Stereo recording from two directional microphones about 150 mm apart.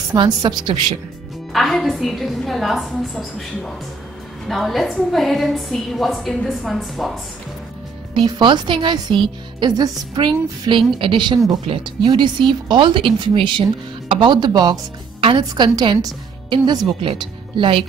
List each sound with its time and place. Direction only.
0.1 s a woman's voice: 30° right (ahead or behind)
1.5 s a woman's voice: centre (ahead or behind)
8.1 s speech: 30° right (ahead or behind)